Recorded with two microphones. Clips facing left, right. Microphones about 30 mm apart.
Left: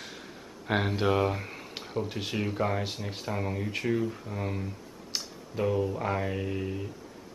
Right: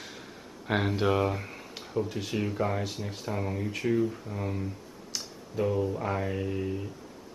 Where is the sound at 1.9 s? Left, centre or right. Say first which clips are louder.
Right 2 dB; left.